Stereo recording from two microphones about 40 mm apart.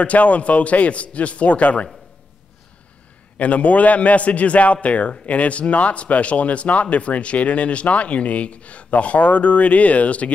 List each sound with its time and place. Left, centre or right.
0.0 s speech: left
3.3 s speech: left